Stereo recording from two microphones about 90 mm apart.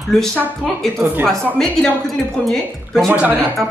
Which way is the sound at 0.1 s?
5° left (ahead or behind).